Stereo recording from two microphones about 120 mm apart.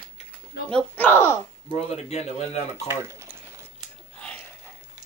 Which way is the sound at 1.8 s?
65° left (ahead or behind).